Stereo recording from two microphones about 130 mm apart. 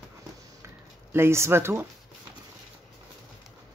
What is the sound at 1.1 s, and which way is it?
Speech, 20° right (ahead or behind).